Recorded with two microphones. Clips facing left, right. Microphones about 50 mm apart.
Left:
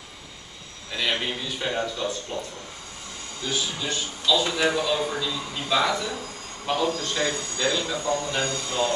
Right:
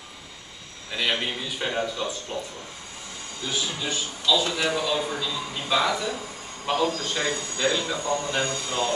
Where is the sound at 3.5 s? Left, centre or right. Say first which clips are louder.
Left 1 dB; centre.